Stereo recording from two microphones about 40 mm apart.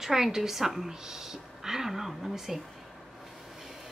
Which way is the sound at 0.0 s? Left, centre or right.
Centre.